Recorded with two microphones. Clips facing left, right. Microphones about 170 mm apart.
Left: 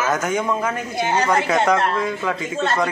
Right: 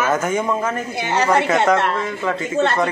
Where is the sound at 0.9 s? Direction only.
70° right (ahead or behind).